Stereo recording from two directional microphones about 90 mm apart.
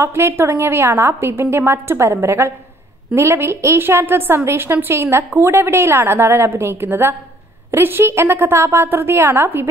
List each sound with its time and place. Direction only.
0.0 s a woman's voice: 25° right (ahead or behind)